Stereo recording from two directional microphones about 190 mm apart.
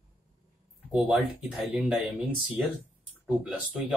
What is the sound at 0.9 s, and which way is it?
Speech, 5° right (ahead or behind).